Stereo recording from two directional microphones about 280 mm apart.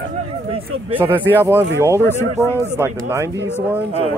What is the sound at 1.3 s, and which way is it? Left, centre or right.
Speech, centre.